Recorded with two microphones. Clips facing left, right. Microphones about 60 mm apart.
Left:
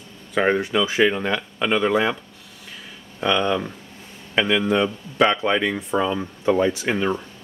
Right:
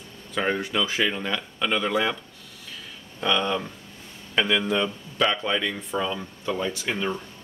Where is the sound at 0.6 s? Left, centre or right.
Centre.